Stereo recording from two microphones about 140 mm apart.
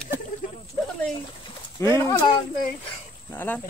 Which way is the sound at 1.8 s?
20° left (ahead or behind).